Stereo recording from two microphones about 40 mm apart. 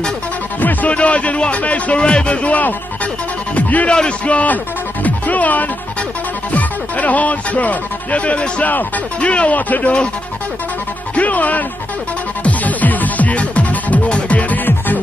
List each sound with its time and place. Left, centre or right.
0.6 s music: left
0.9 s a man's voice: left
3.5 s a man's voice: left
5.0 s music: left
6.5 s speech: left
8.6 s a man's voice: left
11.1 s speech: left
12.4 s music: left
14.0 s music: left
14.5 s music: left